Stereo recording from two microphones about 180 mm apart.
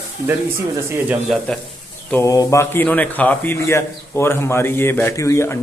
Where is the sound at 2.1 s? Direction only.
20° left (ahead or behind).